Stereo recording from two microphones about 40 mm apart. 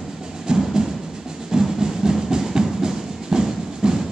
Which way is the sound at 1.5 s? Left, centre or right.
Centre.